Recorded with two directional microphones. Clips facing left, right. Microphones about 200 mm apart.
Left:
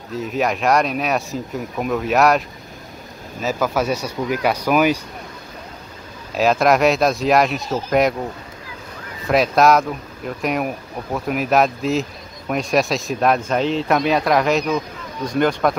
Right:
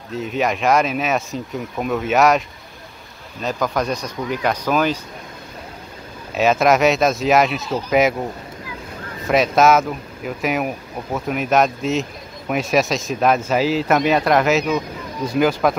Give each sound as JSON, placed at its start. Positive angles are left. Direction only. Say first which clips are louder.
{"t": 0.1, "sound": "speech", "louder": "even", "side_deg": 0}
{"t": 6.3, "sound": "speech", "louder": "even", "side_deg": 0}
{"t": 9.3, "sound": "speech", "louder": "even", "side_deg": 0}